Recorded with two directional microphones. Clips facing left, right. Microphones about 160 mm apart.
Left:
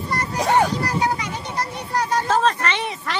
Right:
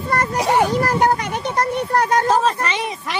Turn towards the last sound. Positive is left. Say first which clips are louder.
# right 1 dB
turn(degrees=-10)  # may be behind; listen again after turning